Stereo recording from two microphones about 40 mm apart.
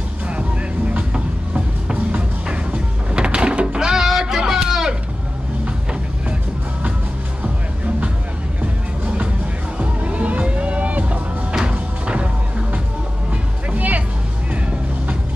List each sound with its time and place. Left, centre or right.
0.3 s vehicle: right
1.1 s music: right
3.9 s music: centre
4.5 s a sound: centre
7.4 s music: right
13.7 s music: right